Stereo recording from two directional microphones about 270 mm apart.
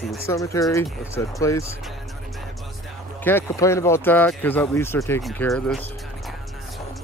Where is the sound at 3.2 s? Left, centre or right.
Centre.